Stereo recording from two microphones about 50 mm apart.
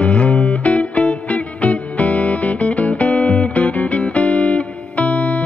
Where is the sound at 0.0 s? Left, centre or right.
Left.